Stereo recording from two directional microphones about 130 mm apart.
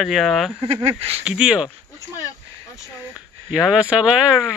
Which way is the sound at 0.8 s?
55° right (ahead or behind).